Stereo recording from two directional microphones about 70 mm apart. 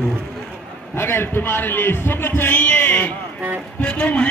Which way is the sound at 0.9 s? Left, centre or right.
Left.